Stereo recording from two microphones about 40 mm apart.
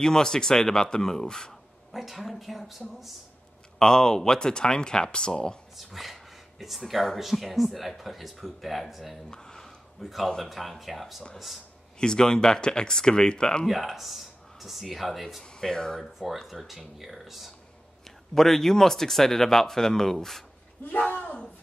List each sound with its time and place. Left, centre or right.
0.0 s a man's voice: centre
1.9 s speech: centre
3.8 s a man's voice: centre
5.8 s a sound: centre
7.2 s speech: centre
9.3 s a sound: centre
10.0 s speech: centre
12.0 s speech: centre
13.7 s speech: centre
15.4 s speech: centre
16.4 s speech: centre
18.0 s a man's voice: centre
20.8 s speech: left